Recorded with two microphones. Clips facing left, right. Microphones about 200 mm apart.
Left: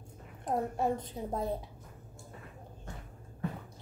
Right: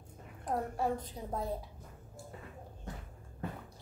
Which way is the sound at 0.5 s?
25° left (ahead or behind).